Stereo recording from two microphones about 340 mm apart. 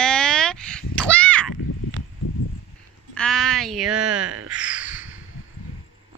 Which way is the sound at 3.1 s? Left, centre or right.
Centre.